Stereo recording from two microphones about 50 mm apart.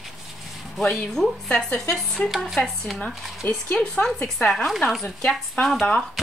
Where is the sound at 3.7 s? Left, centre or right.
Centre.